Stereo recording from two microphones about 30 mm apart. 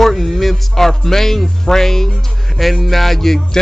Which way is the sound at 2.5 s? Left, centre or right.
Centre.